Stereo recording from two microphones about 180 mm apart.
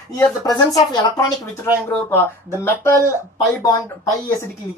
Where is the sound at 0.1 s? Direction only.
20° left (ahead or behind).